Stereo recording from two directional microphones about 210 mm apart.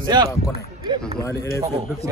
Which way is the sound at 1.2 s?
15° left (ahead or behind).